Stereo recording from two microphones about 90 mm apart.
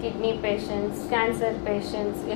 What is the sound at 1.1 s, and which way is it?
Speech, 15° left (ahead or behind).